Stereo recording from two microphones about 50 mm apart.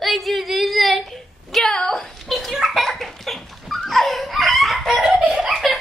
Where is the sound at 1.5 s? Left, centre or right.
Centre.